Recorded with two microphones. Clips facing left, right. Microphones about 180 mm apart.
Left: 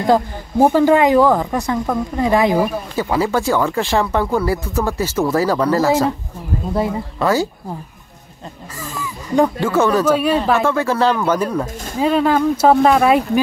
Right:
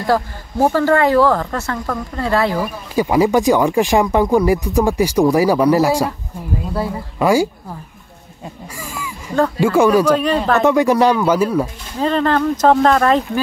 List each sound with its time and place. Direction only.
0.0 s speech: 15° left (ahead or behind)
3.0 s speech: 15° right (ahead or behind)
7.2 s speech: 10° right (ahead or behind)
9.6 s speech: 10° right (ahead or behind)
10.0 s speech: 5° left (ahead or behind)
10.6 s speech: 15° right (ahead or behind)
12.0 s speech: 10° left (ahead or behind)